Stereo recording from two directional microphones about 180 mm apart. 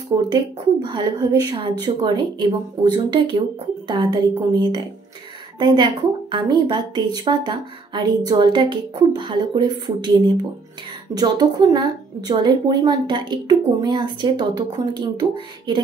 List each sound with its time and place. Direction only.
0.3 s speech: 25° right (ahead or behind)